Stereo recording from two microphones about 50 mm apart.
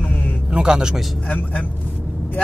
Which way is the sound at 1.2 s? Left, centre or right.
Left.